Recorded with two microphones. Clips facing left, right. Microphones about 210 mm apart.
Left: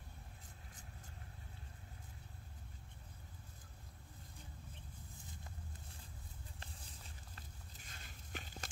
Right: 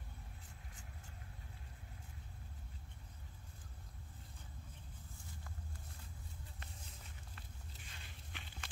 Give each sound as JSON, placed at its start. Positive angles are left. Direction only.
{"t": 7.3, "sound": "walk", "side_deg": 40}